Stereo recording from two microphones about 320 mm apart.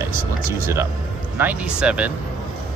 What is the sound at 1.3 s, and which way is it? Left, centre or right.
Speech, centre.